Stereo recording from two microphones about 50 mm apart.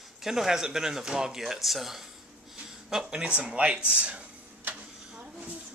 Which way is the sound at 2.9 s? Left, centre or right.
Centre.